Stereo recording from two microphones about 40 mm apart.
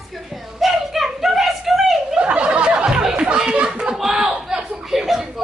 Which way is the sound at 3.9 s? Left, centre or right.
Centre.